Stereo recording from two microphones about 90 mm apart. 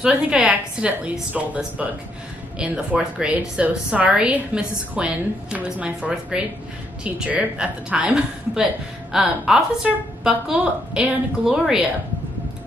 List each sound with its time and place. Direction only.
0.0 s a woman's voice: 10° right (ahead or behind)